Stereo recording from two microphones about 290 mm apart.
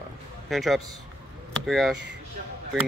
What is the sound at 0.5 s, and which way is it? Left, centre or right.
Speech, centre.